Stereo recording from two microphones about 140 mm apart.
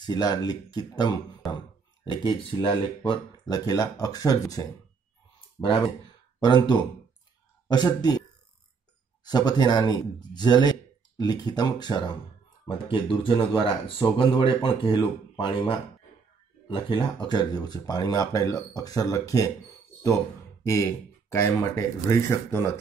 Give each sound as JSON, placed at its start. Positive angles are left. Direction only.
{"t": 0.0, "sound": "speech", "side_deg": 30}
{"t": 5.6, "sound": "speech", "side_deg": 10}
{"t": 6.4, "sound": "speech", "side_deg": 30}
{"t": 9.2, "sound": "speech", "side_deg": 30}
{"t": 16.6, "sound": "speech", "side_deg": 35}
{"t": 20.6, "sound": "speech", "side_deg": 20}